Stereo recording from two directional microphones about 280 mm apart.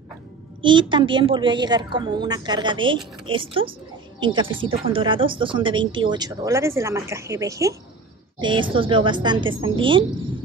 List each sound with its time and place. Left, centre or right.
0.6 s speech: centre